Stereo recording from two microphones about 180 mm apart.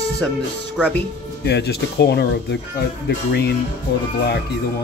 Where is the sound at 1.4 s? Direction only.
65° left (ahead or behind).